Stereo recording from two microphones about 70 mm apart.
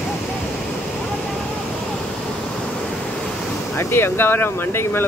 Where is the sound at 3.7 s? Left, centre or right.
Left.